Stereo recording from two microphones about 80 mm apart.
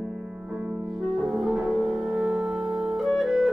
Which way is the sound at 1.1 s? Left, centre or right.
Centre.